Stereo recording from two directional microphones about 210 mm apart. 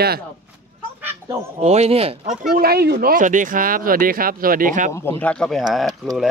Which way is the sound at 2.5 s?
45° right (ahead or behind).